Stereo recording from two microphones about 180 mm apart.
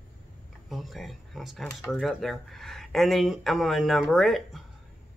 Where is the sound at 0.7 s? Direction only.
Centre (ahead or behind).